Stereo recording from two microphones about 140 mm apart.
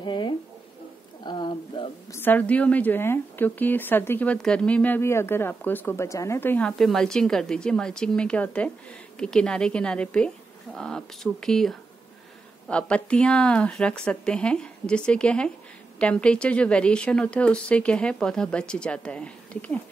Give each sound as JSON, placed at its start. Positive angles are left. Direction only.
{"t": 0.0, "sound": "a sound", "side_deg": 35}
{"t": 2.1, "sound": "a woman's voice", "side_deg": 15}
{"t": 6.8, "sound": "a woman's voice", "side_deg": 0}